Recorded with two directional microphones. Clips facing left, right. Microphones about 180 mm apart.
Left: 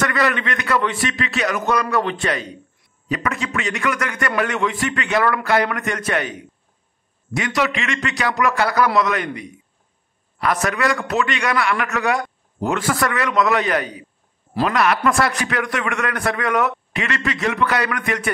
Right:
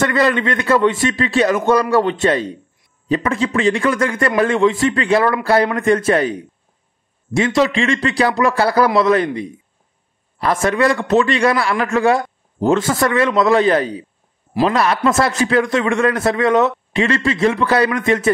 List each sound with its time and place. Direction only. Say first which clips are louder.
0.0 s a man's voice: right 5 dB; 25° right (ahead or behind)